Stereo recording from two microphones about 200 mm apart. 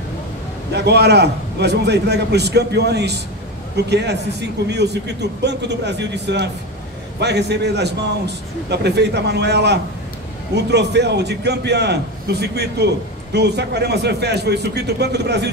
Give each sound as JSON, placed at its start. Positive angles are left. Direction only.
{"t": 0.7, "sound": "a man's voice", "side_deg": -55}